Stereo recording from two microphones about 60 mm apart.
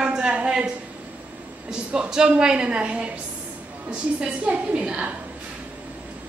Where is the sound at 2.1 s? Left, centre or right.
Centre.